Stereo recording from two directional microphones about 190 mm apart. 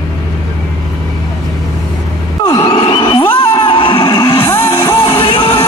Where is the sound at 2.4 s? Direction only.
25° left (ahead or behind).